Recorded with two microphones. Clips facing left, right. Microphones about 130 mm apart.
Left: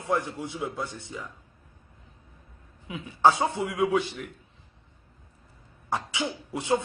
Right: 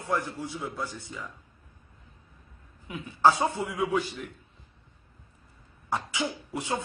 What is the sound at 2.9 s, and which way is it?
Speech, 25° left (ahead or behind).